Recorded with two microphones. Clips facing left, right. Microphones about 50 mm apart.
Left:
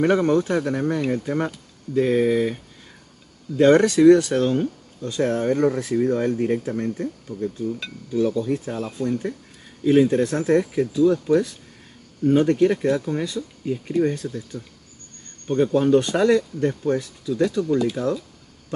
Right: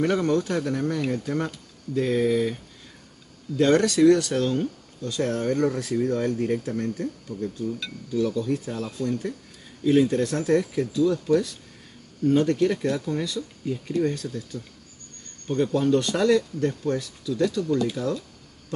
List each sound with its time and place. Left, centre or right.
0.0 s speech: left
3.5 s speech: left